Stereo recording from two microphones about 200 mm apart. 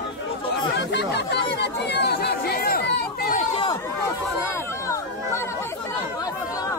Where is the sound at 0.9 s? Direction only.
60° left (ahead or behind).